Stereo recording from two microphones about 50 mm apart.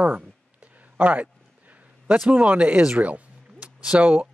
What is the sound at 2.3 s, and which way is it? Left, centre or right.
Speech, right.